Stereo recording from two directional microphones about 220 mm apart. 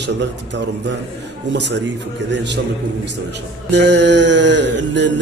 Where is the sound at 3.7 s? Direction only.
50° right (ahead or behind).